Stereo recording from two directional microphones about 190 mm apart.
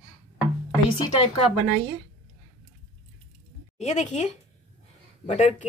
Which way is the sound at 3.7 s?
35° left (ahead or behind).